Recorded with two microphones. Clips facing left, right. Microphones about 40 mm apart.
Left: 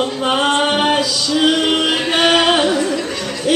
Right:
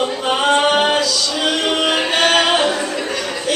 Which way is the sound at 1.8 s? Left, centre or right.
Centre.